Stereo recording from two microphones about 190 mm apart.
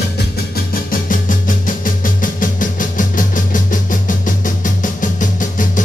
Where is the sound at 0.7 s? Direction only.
45° left (ahead or behind).